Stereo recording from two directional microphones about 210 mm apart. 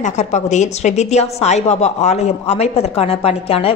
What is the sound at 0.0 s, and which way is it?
A woman's voice, 35° left (ahead or behind).